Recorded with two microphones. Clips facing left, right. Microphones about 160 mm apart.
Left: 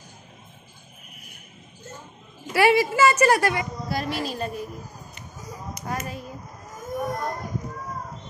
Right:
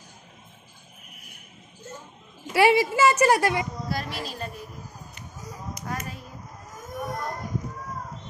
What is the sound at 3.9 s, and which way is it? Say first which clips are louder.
Speech: left 4 dB; 5° left (ahead or behind).